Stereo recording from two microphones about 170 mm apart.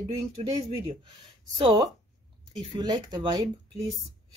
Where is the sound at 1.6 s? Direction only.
20° right (ahead or behind).